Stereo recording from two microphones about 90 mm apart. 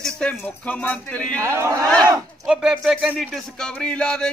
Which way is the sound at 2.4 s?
10° right (ahead or behind).